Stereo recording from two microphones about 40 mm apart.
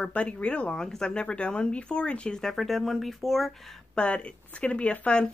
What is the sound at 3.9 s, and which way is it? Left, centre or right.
Speech, left.